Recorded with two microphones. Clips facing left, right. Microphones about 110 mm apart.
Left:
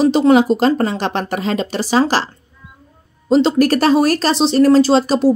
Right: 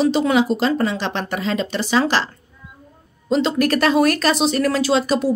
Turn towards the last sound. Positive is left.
turn(degrees=35)  # may be behind; listen again after turning